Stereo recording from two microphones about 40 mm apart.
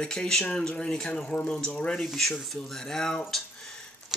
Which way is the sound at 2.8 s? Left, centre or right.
Centre.